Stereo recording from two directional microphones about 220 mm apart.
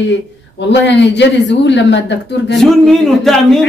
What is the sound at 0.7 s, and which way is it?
Speech, 50° left (ahead or behind).